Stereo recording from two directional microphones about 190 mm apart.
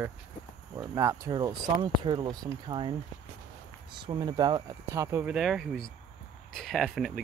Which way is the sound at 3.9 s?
25° right (ahead or behind).